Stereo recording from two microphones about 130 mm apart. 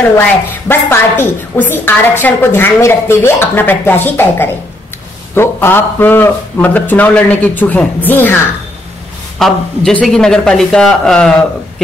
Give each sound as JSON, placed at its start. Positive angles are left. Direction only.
{"t": 0.7, "sound": "a woman's voice", "side_deg": 15}
{"t": 9.4, "sound": "speech", "side_deg": 5}